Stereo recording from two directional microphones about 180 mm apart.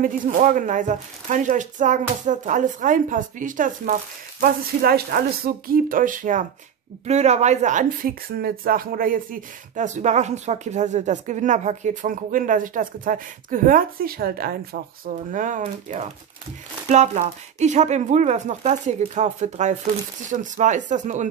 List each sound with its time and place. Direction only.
0.0 s speech: 45° right (ahead or behind)